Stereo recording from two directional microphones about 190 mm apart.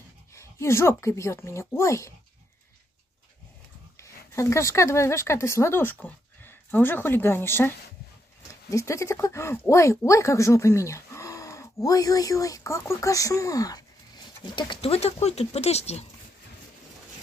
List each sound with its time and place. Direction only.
0.3 s speech: 15° left (ahead or behind)
3.9 s speech: 15° left (ahead or behind); by 16.1 s 35° left (ahead or behind)